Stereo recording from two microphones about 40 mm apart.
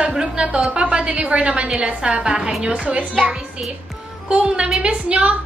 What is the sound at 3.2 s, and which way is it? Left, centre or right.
A woman's voice, centre.